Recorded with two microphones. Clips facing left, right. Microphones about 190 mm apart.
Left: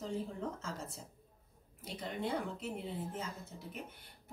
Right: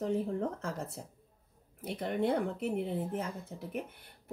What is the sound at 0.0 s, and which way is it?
Speech, 60° right (ahead or behind).